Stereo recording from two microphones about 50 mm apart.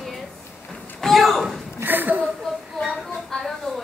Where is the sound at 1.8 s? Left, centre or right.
Right.